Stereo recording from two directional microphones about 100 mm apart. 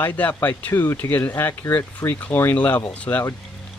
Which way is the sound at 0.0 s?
15° left (ahead or behind).